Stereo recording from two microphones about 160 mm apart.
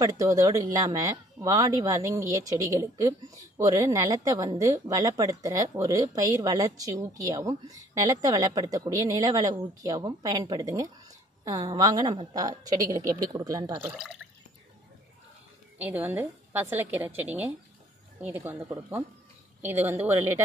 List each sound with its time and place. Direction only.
0.0 s speech: 20° right (ahead or behind)
15.8 s a woman's voice: 10° right (ahead or behind)